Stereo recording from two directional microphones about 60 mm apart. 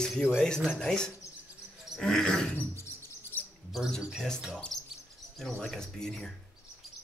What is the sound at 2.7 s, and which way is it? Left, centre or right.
Bird, left.